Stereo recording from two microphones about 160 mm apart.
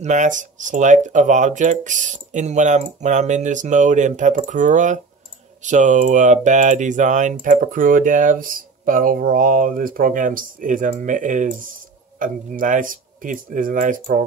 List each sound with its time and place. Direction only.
0.0 s speech: 50° right (ahead or behind)